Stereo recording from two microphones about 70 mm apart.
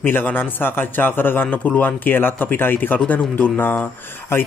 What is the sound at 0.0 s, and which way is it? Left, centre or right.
Speech, left.